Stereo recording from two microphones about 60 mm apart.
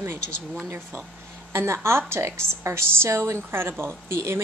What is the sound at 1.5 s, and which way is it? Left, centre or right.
A woman's voice, right.